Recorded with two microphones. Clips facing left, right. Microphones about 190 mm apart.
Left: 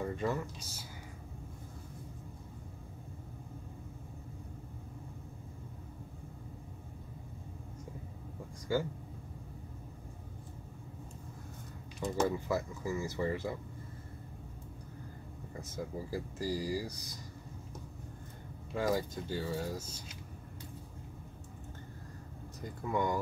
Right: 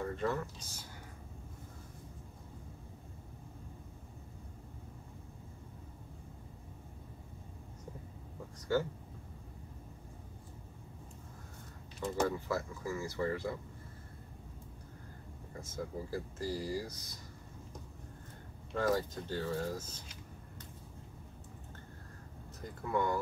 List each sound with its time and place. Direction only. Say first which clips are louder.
0.0 s speech: left 1 dB; 10° left (ahead or behind)
8.7 s speech: even; 10° left (ahead or behind)
12.0 s speech: left 1 dB; 15° left (ahead or behind)
15.6 s speech: even; 15° left (ahead or behind)
18.7 s speech: even; 10° left (ahead or behind)
22.8 s speech: even; 15° left (ahead or behind)